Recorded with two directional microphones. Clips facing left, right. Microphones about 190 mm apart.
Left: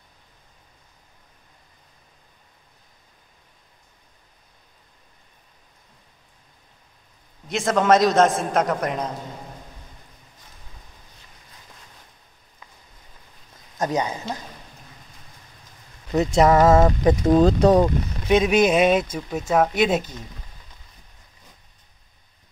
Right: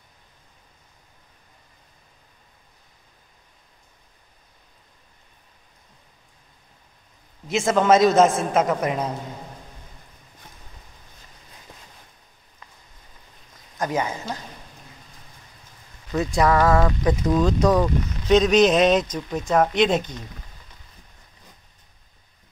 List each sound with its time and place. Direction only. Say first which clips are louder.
7.4 s a man's voice: right 1 dB; centre (ahead or behind)
13.7 s speech: left 1 dB; 20° left (ahead or behind)
16.1 s speech: left 3 dB; 25° left (ahead or behind)
17.0 s speech: left 4 dB; 35° left (ahead or behind)
18.3 s speech: right 1 dB; 10° left (ahead or behind)